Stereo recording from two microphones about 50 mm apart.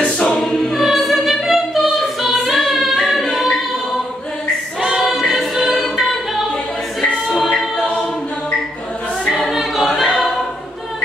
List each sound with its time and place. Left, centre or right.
0.0 s choir: left
0.4 s choir: centre
0.7 s choir: centre
4.7 s choir: centre
9.5 s choir: centre